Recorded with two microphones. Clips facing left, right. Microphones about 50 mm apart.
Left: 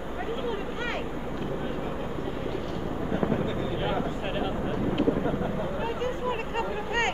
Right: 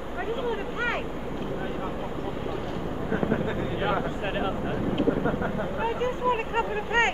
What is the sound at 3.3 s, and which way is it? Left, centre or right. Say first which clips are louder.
Vehicle: right 1 dB; right.